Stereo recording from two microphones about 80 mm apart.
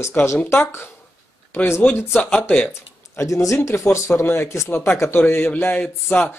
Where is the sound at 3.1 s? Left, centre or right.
Left.